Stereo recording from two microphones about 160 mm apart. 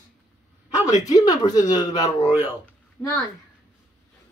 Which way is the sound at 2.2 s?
40° left (ahead or behind).